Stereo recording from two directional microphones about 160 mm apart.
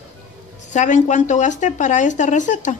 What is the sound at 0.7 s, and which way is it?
Speech, 50° left (ahead or behind).